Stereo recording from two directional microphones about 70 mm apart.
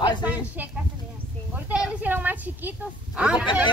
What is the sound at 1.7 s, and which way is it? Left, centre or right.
Speech, centre.